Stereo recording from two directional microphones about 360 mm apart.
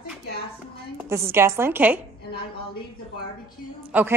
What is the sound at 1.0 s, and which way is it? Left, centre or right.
A woman's voice, centre.